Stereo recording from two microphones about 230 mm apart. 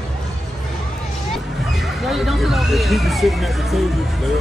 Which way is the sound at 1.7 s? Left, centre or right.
Centre.